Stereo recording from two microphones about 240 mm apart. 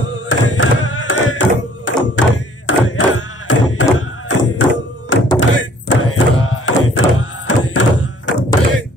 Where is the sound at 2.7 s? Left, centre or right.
Left.